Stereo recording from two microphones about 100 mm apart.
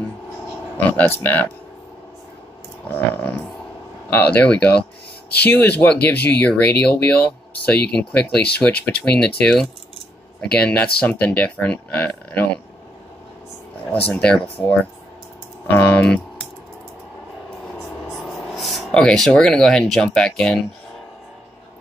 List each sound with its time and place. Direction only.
0.7 s speech: 20° left (ahead or behind)
2.9 s speech: 10° left (ahead or behind)
14.2 s speech: 10° left (ahead or behind)
15.6 s speech: 20° left (ahead or behind)
18.1 s speech: centre (ahead or behind)